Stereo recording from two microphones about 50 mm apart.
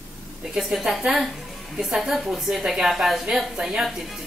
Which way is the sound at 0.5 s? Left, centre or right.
Centre.